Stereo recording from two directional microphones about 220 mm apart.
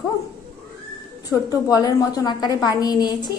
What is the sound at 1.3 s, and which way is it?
A woman's voice, 15° left (ahead or behind).